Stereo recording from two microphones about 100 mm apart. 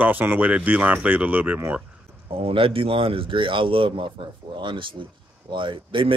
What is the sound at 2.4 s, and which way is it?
Speech, 65° right (ahead or behind).